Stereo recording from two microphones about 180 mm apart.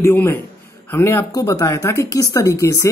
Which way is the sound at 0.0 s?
10° left (ahead or behind).